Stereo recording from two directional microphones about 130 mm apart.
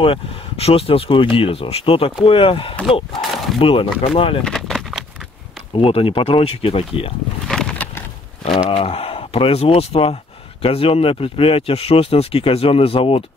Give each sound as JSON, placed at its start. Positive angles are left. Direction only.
{"t": 0.0, "sound": "speech", "side_deg": 50}
{"t": 3.2, "sound": "a sound", "side_deg": 45}
{"t": 3.5, "sound": "speech", "side_deg": 45}
{"t": 4.5, "sound": "a sound", "side_deg": 5}
{"t": 5.9, "sound": "speech", "side_deg": 45}
{"t": 8.5, "sound": "speech", "side_deg": 45}